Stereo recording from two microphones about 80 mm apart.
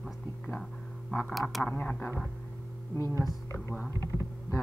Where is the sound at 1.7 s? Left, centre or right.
Left.